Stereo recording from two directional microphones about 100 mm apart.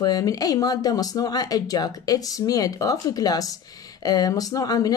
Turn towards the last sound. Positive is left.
turn(degrees=40)  # may be behind; listen again after turning